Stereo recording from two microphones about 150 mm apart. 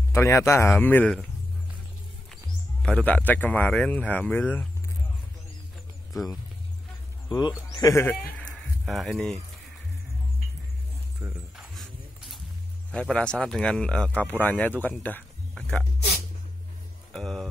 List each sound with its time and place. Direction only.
0.1 s speech: 15° left (ahead or behind)
2.8 s speech: 5° left (ahead or behind)
6.1 s speech: centre (ahead or behind)
7.2 s speech: 30° left (ahead or behind)
7.9 s speech: 15° left (ahead or behind)
8.2 s a sound: 5° left (ahead or behind)
11.2 s speech: 10° right (ahead or behind)
11.5 s a sound: centre (ahead or behind)
12.9 s speech: 5° left (ahead or behind)
17.1 s speech: centre (ahead or behind)